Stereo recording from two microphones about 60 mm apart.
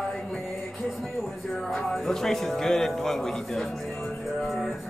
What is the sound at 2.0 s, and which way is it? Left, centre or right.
A man's voice, centre.